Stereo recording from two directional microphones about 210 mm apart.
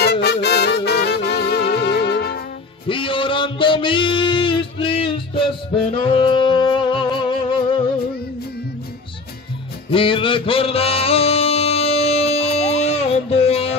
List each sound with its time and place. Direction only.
0.0 s music: 50° left (ahead or behind)
2.9 s a sound: 25° left (ahead or behind)
5.9 s music: 25° left (ahead or behind)
9.8 s music: 25° left (ahead or behind)